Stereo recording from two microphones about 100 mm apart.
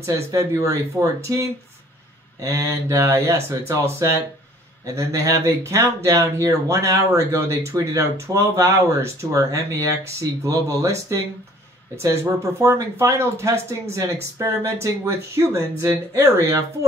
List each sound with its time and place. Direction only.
0.0 s speech: 30° right (ahead or behind)